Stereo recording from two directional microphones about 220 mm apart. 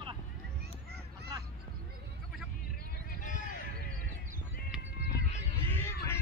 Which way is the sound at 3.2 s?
35° left (ahead or behind).